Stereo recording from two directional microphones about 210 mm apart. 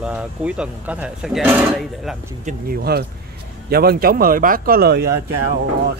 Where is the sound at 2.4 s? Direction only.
45° right (ahead or behind).